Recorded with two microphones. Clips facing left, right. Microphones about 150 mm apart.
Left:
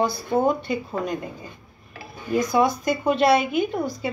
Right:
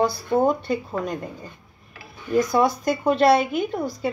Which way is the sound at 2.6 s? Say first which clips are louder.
Right 1 dB; centre (ahead or behind).